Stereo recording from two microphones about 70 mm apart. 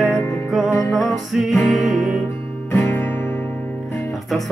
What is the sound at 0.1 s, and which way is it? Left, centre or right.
Music, left.